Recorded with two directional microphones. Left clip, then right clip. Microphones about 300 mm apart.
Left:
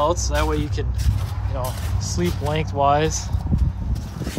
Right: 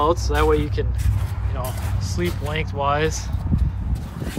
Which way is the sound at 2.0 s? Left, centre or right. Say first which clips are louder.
Left 1 dB; centre.